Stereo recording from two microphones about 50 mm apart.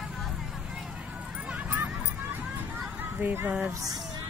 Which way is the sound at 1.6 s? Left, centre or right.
Right.